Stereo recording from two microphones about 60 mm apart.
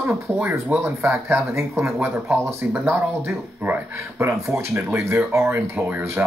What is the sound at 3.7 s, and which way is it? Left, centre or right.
Speech, right.